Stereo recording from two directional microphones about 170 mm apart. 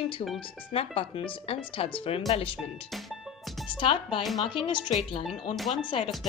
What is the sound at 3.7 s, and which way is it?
Speech, 30° left (ahead or behind).